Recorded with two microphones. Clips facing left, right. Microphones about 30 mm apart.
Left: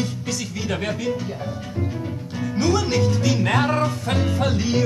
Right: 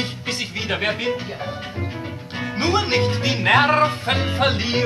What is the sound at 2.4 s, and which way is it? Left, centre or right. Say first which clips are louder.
A woman's voice: right 1 dB; right.